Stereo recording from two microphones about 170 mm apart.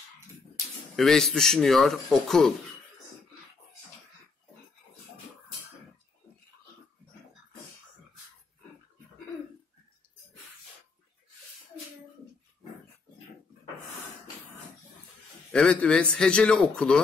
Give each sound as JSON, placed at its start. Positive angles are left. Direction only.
{"t": 0.9, "sound": "speech", "side_deg": 0}
{"t": 15.5, "sound": "speech", "side_deg": 5}